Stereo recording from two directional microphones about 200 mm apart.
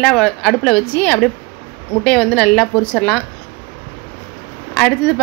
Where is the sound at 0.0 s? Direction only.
5° left (ahead or behind).